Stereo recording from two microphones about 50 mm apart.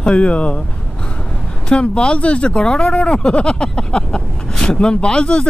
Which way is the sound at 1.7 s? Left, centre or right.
Centre.